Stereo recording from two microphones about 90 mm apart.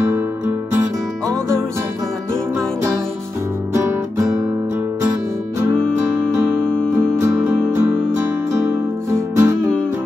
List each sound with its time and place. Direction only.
5.8 s music: 10° left (ahead or behind)
6.3 s music: 25° right (ahead or behind)
6.6 s music: 10° left (ahead or behind)
7.0 s music: 30° right (ahead or behind)